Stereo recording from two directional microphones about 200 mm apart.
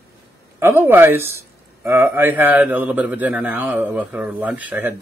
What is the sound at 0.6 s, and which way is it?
A man's voice, 10° right (ahead or behind).